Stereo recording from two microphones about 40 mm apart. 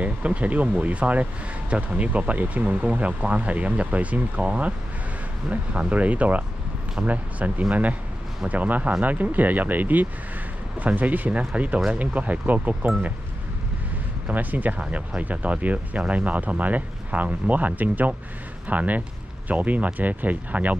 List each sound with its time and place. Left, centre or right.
0.0 s speech: right
14.3 s speech: right